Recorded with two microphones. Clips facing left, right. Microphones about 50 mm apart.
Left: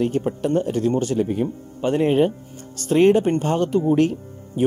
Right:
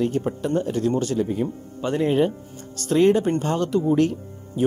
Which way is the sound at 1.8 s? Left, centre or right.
Left.